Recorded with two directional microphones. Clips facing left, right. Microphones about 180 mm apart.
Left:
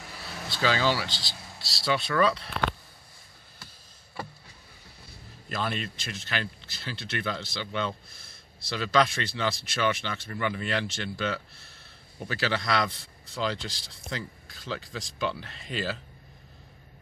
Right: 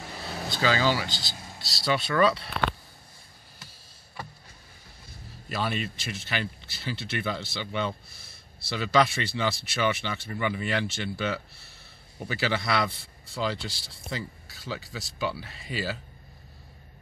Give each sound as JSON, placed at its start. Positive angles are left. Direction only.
{"t": 0.1, "sound": "air conditioning", "side_deg": -35}
{"t": 0.6, "sound": "speech", "side_deg": -5}
{"t": 5.5, "sound": "speech", "side_deg": -5}